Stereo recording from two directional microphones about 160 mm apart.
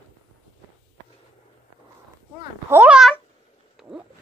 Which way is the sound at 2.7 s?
10° right (ahead or behind).